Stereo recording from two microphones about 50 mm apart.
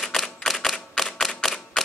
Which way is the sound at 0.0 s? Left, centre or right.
Centre.